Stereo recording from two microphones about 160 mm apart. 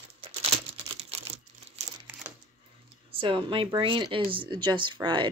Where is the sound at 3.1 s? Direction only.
30° right (ahead or behind).